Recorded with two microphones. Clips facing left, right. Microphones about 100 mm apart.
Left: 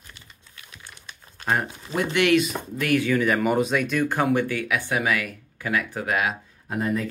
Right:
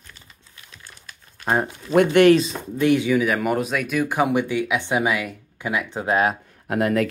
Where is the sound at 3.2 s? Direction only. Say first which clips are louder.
Even; centre (ahead or behind); by 6.2 s 25° right (ahead or behind).